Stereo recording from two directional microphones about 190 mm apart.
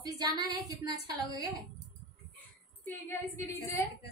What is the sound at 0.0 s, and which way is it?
Child singing, 20° right (ahead or behind).